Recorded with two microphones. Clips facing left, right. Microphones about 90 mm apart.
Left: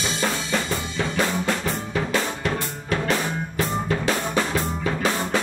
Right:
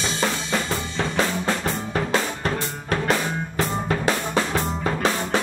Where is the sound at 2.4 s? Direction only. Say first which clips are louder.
Even; 45° right (ahead or behind).